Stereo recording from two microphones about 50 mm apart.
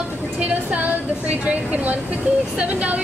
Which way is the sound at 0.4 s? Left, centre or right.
Right.